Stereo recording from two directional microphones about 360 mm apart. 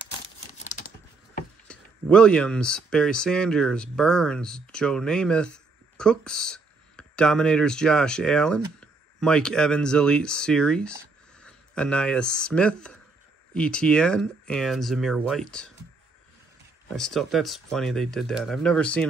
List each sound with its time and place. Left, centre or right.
0.6 s typing: centre
1.7 s speech: centre
16.9 s speech: centre